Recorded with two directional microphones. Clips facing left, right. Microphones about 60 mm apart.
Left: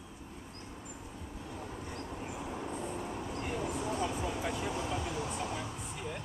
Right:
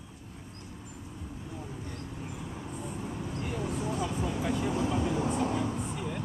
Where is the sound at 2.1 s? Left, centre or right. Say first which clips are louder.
Left 1 dB; centre.